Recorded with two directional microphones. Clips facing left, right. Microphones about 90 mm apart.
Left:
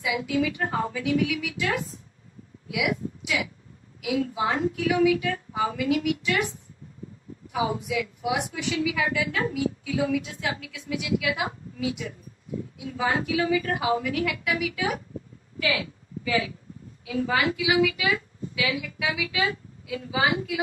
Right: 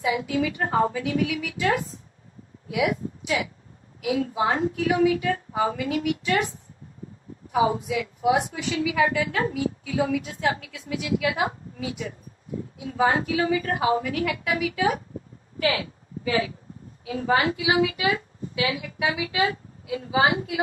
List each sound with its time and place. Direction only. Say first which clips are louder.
0.0 s a woman's voice: right 1 dB; 35° right (ahead or behind)
7.5 s a woman's voice: right 4 dB; 35° right (ahead or behind)